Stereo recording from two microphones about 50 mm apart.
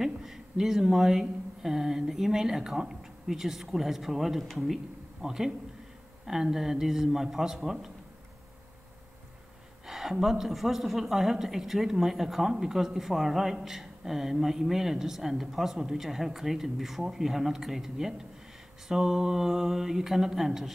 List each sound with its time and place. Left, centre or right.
0.0 s a woman's voice: centre
9.8 s a woman's voice: centre